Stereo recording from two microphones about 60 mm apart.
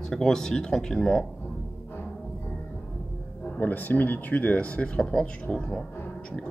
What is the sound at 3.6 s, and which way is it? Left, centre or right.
Speech, left.